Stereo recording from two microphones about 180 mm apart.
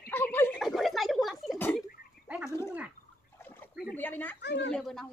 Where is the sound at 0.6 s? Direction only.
Centre (ahead or behind).